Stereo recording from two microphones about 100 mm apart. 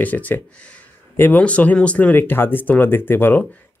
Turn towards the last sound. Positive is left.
turn(degrees=20)  # may be behind; listen again after turning